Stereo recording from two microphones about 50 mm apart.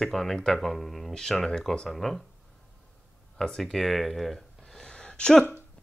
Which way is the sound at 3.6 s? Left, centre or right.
Centre.